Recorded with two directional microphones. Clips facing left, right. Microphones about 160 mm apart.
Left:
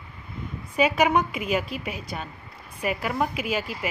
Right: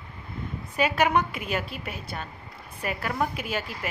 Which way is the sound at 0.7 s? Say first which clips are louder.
Left 2 dB; 5° left (ahead or behind).